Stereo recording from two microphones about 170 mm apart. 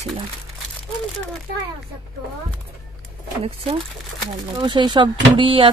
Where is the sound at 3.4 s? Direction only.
35° right (ahead or behind).